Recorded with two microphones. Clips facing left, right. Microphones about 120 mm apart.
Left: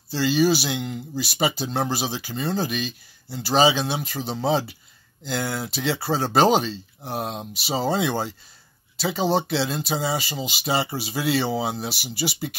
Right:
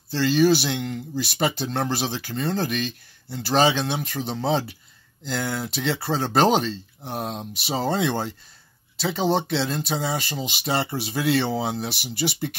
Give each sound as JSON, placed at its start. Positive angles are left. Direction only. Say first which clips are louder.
{"t": 0.1, "sound": "speech", "louder": "right 1 dB", "side_deg": 5}